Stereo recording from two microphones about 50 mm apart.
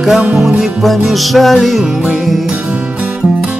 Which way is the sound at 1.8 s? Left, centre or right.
Centre.